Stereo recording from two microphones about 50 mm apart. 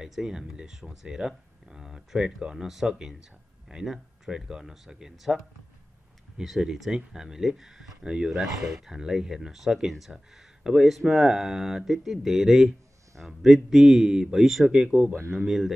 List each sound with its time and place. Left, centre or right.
0.0 s speech: centre
6.4 s speech: centre
8.4 s speech: centre